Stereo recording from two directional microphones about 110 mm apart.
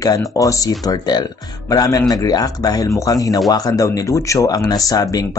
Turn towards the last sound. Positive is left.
turn(degrees=35)  # may be behind; listen again after turning